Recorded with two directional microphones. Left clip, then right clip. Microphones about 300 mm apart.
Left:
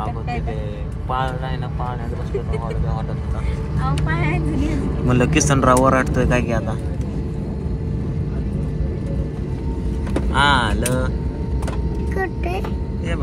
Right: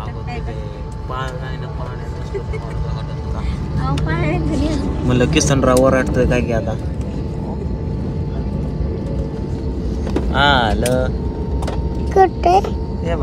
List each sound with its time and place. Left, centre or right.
5.0 s speech: centre
10.3 s speech: centre
12.1 s speech: right